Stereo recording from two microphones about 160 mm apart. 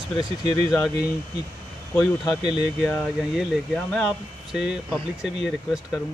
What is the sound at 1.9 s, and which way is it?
Speech, 25° left (ahead or behind).